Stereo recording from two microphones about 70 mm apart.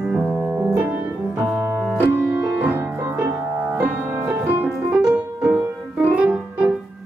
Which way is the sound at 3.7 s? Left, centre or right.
Right.